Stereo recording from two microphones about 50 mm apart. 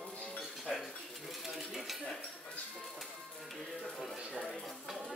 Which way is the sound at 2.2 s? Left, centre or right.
Left.